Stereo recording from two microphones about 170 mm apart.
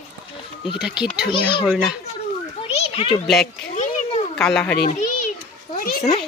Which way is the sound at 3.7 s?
40° left (ahead or behind).